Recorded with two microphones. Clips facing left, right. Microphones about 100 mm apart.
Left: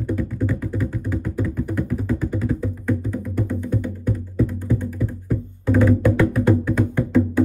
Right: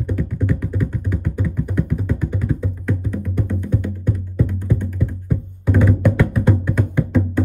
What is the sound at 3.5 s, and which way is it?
Music, 10° left (ahead or behind).